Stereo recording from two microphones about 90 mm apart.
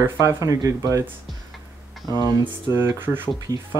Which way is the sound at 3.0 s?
25° right (ahead or behind).